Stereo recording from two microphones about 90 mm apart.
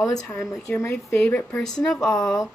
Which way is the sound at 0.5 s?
35° left (ahead or behind).